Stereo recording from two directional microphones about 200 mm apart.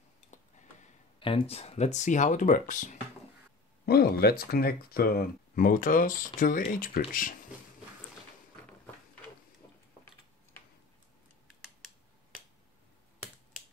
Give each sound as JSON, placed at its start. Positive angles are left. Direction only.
{"t": 0.3, "sound": "speech", "side_deg": 35}
{"t": 3.8, "sound": "speech", "side_deg": 50}